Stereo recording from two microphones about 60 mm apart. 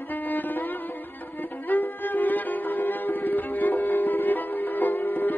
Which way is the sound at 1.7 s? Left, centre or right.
Left.